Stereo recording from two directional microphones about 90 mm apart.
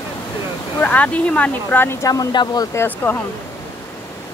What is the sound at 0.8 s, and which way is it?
Speech, 15° left (ahead or behind).